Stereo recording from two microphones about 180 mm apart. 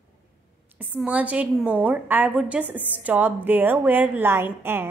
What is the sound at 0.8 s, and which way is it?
A woman's voice, 5° right (ahead or behind).